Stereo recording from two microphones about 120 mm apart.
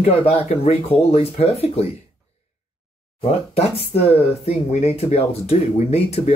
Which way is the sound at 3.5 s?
55° left (ahead or behind).